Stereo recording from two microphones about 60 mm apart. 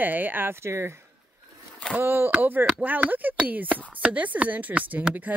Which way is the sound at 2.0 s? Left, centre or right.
Right.